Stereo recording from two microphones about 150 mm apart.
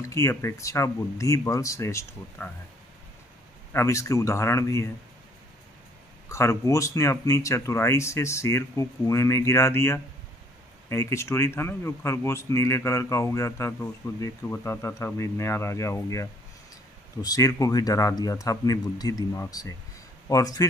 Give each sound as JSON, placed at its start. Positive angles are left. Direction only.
{"t": 0.1, "sound": "speech", "side_deg": 20}
{"t": 3.7, "sound": "speech", "side_deg": 20}
{"t": 6.2, "sound": "speech", "side_deg": 20}